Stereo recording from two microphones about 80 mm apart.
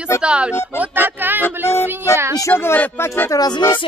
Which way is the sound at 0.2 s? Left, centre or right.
Centre.